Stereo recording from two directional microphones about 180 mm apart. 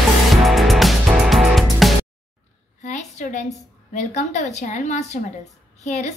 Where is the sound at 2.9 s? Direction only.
40° left (ahead or behind).